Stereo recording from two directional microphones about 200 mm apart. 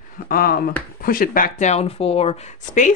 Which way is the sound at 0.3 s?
50° left (ahead or behind).